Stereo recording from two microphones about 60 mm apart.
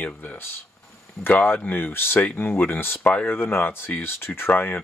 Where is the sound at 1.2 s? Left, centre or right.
Left.